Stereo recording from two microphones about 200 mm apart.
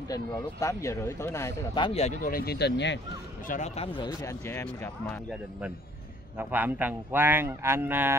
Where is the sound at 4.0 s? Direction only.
15° left (ahead or behind).